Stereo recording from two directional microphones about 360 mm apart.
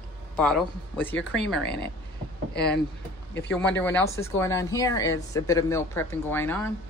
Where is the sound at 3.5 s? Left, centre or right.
Centre.